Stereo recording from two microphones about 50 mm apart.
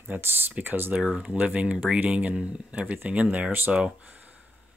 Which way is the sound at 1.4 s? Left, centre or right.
Right.